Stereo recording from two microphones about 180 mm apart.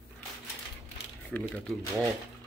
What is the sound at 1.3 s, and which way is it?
Speech, 10° left (ahead or behind).